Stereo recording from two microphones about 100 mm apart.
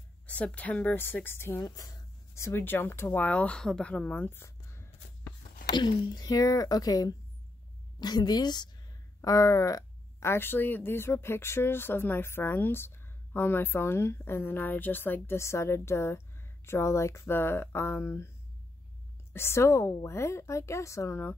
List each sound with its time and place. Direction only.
0.3 s speech: 15° left (ahead or behind)
5.7 s speech: 50° left (ahead or behind); by 18.3 s 25° left (ahead or behind)
19.3 s speech: 25° left (ahead or behind)